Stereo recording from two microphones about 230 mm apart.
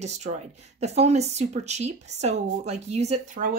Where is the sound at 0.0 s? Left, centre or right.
Right.